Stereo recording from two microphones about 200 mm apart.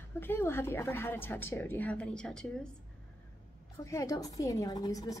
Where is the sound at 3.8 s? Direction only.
15° left (ahead or behind).